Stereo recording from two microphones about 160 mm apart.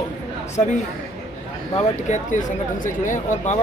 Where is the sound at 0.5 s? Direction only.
50° left (ahead or behind).